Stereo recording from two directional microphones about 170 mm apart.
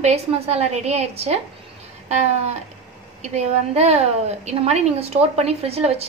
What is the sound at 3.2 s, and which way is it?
A woman's voice, 40° right (ahead or behind).